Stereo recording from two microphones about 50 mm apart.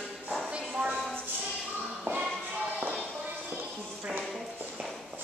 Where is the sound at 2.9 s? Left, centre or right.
Centre.